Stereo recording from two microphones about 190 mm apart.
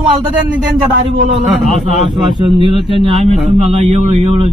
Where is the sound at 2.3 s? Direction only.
25° right (ahead or behind).